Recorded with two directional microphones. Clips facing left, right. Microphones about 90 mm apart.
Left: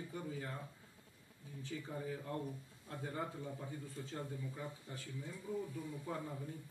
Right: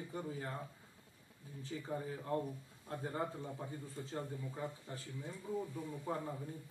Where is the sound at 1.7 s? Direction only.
30° right (ahead or behind).